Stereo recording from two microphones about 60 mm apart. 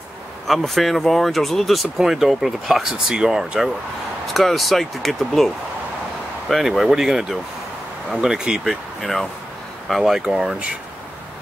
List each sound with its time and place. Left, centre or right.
0.5 s speech: centre
6.5 s speech: centre
9.0 s speech: centre
9.8 s speech: centre